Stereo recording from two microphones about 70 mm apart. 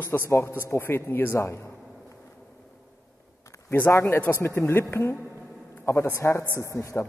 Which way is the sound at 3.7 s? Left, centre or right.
Left.